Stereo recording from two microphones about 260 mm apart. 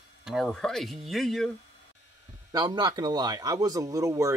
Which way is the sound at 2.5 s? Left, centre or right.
Centre.